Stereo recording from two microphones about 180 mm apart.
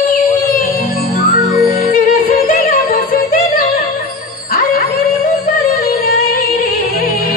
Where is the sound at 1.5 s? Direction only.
Centre (ahead or behind).